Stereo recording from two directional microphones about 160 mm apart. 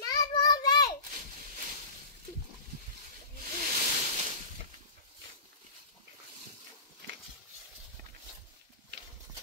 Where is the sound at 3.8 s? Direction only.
45° right (ahead or behind).